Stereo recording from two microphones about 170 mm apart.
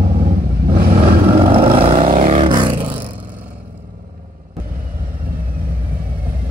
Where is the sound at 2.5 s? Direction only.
25° right (ahead or behind).